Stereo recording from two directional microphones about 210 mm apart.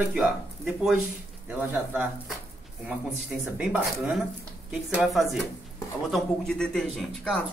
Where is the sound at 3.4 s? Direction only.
5° right (ahead or behind).